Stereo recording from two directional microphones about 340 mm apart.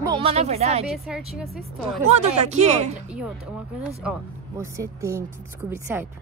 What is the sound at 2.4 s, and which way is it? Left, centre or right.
Speech, centre.